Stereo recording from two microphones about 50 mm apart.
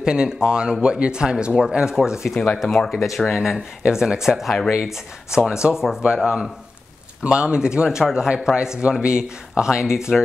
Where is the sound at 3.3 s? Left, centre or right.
Centre.